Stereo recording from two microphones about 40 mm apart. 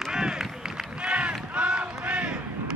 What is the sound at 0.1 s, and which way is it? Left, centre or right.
Run, centre.